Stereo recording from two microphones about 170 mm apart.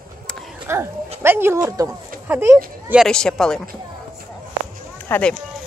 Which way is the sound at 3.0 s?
5° left (ahead or behind).